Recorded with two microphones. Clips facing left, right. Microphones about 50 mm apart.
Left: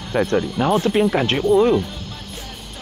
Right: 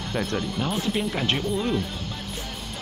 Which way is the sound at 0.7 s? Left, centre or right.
Left.